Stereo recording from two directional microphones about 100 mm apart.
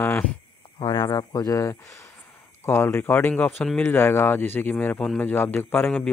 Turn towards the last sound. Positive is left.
turn(degrees=20)  # may be behind; listen again after turning